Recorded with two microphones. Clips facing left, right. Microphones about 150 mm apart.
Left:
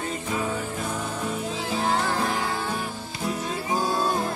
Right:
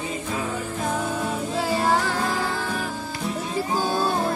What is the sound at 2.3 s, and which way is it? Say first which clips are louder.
Music: right 1 dB; 90° right.